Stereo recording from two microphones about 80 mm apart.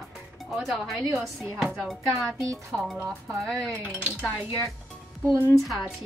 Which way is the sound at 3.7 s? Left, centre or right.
Right.